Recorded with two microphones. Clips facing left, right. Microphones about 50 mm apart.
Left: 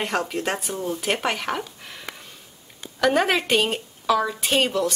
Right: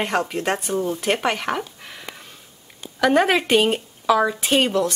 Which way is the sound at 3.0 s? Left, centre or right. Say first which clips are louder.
Right 3 dB; centre.